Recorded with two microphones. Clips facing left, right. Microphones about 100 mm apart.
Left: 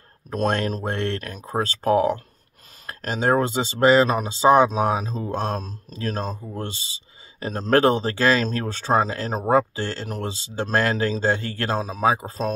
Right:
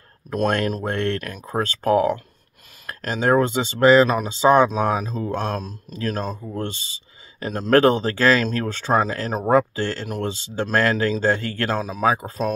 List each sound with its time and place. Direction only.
0.3 s speech: 30° left (ahead or behind)